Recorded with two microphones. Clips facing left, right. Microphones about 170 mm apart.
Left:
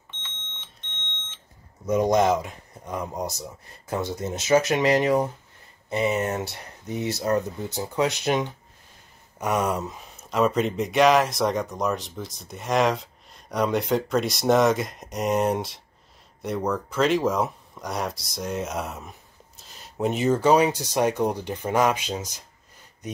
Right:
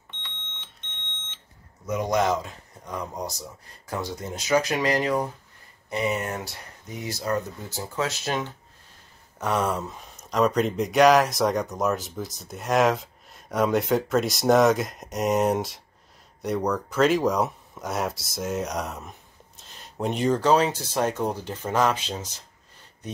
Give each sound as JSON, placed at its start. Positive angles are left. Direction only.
{"t": 1.9, "sound": "speech", "side_deg": 25}